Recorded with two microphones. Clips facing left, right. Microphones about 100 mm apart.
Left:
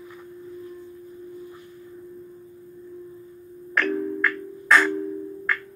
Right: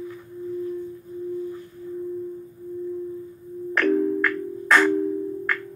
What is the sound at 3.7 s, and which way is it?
Music, 50° right (ahead or behind).